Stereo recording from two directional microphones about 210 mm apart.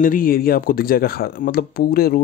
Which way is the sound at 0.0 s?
40° left (ahead or behind).